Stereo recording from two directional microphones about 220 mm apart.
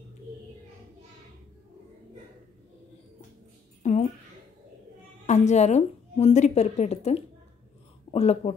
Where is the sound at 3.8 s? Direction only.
30° left (ahead or behind).